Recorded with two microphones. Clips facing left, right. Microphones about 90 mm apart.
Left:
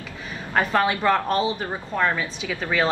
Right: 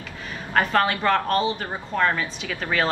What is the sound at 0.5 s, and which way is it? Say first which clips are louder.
A woman's voice: even; 15° left (ahead or behind).